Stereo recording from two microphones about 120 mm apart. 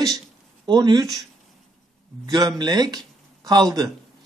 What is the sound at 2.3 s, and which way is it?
Speech, 35° right (ahead or behind).